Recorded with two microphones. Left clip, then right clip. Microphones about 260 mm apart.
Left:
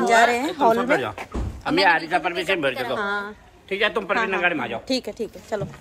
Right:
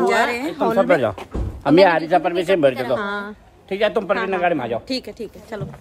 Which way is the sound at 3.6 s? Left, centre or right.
Right.